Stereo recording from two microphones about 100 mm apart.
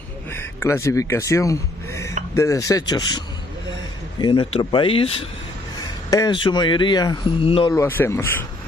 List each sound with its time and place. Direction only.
0.3 s speech: 25° left (ahead or behind)
4.2 s speech: 55° left (ahead or behind)
6.0 s speech: 40° left (ahead or behind)
6.3 s speech: 50° left (ahead or behind)
7.2 s speech: 65° left (ahead or behind)
7.7 s speech: 25° left (ahead or behind)